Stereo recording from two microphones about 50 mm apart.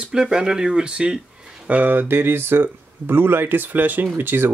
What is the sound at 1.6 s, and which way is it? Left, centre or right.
Speech, right.